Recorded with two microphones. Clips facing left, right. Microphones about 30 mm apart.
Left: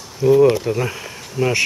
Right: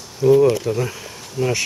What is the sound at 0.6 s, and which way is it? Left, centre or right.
Speech, centre.